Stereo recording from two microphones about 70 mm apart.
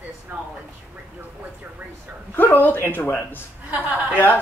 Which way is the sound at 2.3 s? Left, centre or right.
Left.